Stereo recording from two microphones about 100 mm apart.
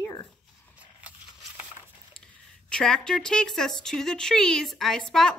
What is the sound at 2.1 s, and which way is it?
Speech, 10° left (ahead or behind).